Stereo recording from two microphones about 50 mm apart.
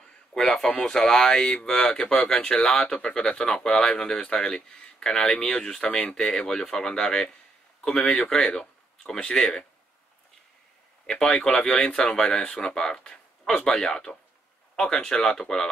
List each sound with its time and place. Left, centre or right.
0.0 s speech: centre
1.4 s speech: left
11.1 s speech: centre